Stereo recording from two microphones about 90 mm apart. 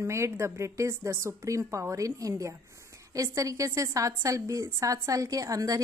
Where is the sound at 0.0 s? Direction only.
30° right (ahead or behind).